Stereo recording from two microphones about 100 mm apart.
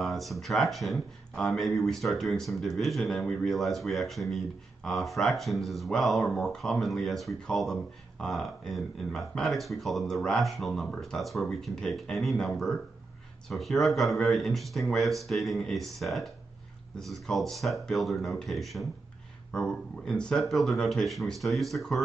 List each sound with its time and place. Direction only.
0.0 s speech: centre (ahead or behind)